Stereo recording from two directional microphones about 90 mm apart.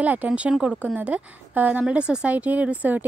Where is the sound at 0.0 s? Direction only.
15° right (ahead or behind).